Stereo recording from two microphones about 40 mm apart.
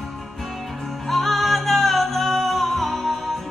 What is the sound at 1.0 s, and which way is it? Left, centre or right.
Music, centre.